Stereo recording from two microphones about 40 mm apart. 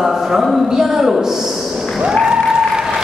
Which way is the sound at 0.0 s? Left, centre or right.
Centre.